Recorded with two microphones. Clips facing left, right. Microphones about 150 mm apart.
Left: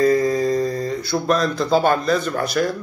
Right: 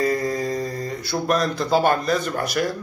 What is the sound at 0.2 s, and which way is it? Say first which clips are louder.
Mantra: left 5 dB; 40° left (ahead or behind).